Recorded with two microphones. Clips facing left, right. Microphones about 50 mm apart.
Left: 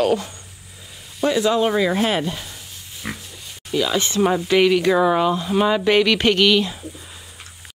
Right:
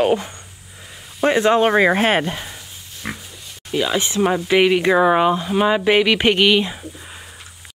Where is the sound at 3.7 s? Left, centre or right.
Centre.